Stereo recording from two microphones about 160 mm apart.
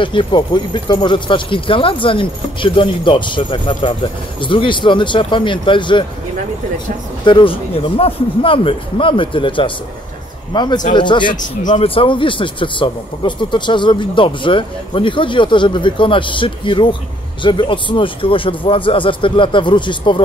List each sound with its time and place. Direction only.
0.0 s speech: 30° left (ahead or behind)
7.2 s a man's voice: 30° left (ahead or behind)
11.3 s speech: 50° left (ahead or behind)
11.8 s speech: 35° left (ahead or behind)